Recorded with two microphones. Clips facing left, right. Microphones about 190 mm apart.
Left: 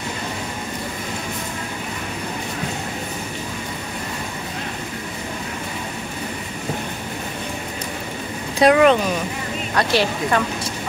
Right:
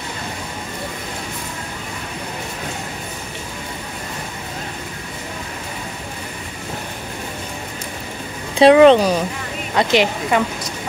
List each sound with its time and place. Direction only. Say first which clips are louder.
8.5 s speech: right 5 dB; 30° right (ahead or behind)
9.8 s speech: right 3 dB; 20° right (ahead or behind)